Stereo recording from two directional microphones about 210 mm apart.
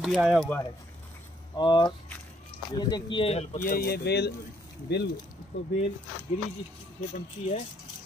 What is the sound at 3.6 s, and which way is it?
Speech, 45° left (ahead or behind).